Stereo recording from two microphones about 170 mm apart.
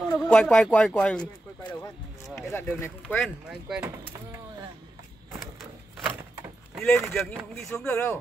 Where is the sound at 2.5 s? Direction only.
15° left (ahead or behind).